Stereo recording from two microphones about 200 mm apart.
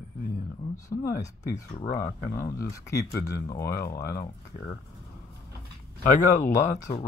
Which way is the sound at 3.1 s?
15° left (ahead or behind).